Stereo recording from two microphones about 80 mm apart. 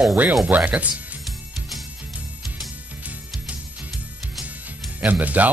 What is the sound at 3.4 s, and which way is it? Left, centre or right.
Music, centre.